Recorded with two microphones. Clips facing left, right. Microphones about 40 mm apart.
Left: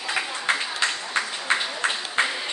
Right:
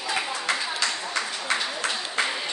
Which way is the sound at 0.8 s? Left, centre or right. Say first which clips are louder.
Left 2 dB; left.